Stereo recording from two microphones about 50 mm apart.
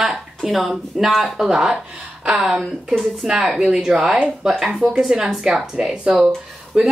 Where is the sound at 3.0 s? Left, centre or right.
Centre.